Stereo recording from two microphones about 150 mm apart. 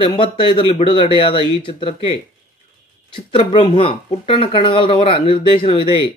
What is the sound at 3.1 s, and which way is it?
Speech, 35° left (ahead or behind).